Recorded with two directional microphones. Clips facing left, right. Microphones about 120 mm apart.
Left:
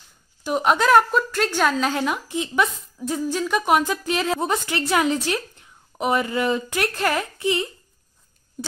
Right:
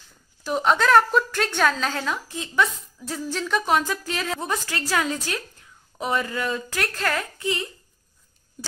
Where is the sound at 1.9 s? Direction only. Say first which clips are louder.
Left 4 dB; 15° left (ahead or behind).